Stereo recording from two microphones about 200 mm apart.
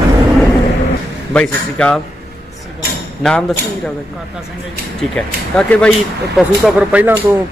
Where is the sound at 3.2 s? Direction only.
Centre (ahead or behind).